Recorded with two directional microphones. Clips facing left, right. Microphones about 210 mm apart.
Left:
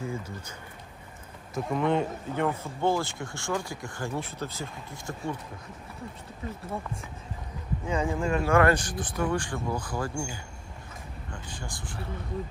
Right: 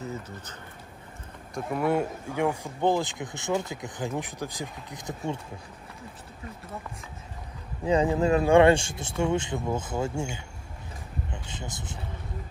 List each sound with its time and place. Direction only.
0.0 s speech: 10° left (ahead or behind)
1.5 s speech: 5° right (ahead or behind)
7.8 s speech: 35° right (ahead or behind)
8.1 s speech: 20° right (ahead or behind)
11.3 s speech: 20° right (ahead or behind)